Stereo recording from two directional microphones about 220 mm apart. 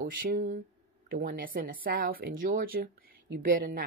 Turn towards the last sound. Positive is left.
turn(degrees=-40)  # may be behind; listen again after turning